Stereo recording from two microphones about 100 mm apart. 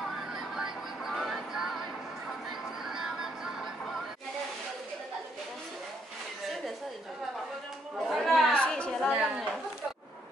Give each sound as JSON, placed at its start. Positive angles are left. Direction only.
{"t": 0.0, "sound": "music", "side_deg": -5}
{"t": 8.1, "sound": "chatter", "side_deg": 0}
{"t": 9.1, "sound": "chatter", "side_deg": -10}